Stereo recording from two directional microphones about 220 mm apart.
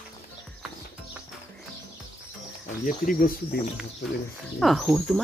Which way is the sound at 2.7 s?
40° left (ahead or behind).